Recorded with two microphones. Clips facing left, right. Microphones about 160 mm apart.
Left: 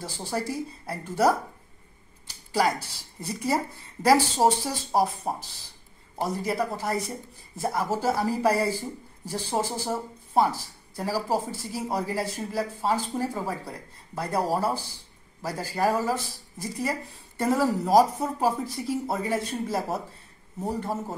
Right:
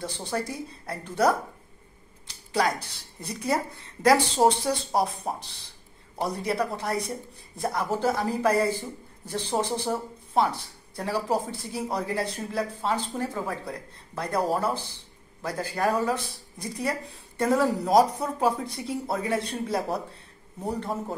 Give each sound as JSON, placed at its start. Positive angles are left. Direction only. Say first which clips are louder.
{"t": 0.0, "sound": "speech", "louder": "even", "side_deg": 5}
{"t": 2.2, "sound": "a sound", "louder": "left 1 dB", "side_deg": 5}
{"t": 3.2, "sound": "speech", "louder": "left 1 dB", "side_deg": 5}